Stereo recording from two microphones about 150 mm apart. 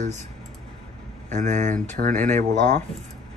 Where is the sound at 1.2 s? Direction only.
55° right (ahead or behind).